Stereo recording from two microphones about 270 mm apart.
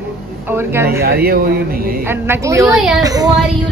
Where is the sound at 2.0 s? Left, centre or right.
Centre.